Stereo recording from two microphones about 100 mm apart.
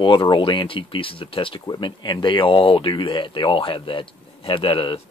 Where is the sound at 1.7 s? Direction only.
50° left (ahead or behind).